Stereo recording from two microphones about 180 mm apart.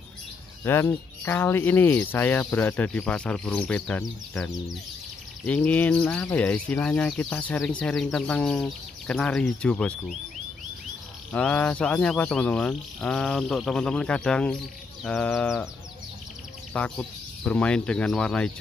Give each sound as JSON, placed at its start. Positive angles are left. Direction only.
{"t": 0.7, "sound": "speech", "side_deg": 15}
{"t": 11.3, "sound": "speech", "side_deg": 10}
{"t": 16.7, "sound": "speech", "side_deg": 5}